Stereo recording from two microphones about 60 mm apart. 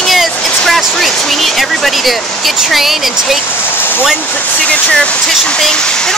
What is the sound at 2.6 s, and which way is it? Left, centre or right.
Speech, centre.